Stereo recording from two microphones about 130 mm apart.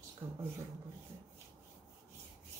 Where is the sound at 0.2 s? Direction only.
40° right (ahead or behind).